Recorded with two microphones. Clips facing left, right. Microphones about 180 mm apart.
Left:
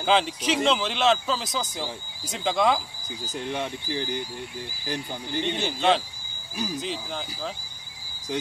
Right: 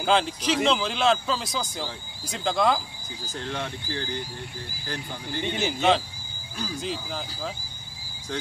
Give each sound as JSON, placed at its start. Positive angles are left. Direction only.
{"t": 0.0, "sound": "speech", "side_deg": 0}
{"t": 3.3, "sound": "speech", "side_deg": 15}
{"t": 5.4, "sound": "speech", "side_deg": -5}